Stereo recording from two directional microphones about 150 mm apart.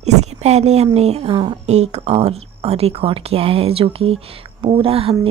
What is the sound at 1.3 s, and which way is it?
Speech, 30° right (ahead or behind).